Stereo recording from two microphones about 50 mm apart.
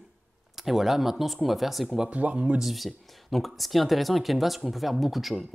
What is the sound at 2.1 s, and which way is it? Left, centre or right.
Speech, right.